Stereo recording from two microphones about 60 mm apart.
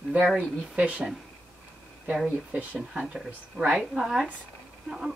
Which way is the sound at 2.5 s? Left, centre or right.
Centre.